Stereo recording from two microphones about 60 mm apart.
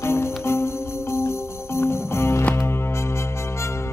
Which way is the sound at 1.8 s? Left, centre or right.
Left.